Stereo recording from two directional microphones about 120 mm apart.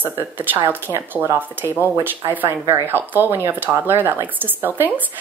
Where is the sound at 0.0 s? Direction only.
15° right (ahead or behind).